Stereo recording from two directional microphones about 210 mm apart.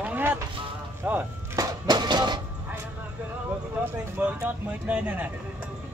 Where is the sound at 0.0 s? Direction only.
5° right (ahead or behind).